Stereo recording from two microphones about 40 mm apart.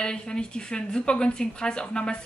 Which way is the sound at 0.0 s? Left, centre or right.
Left.